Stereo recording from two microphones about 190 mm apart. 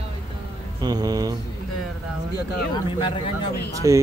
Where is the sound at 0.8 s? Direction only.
20° right (ahead or behind).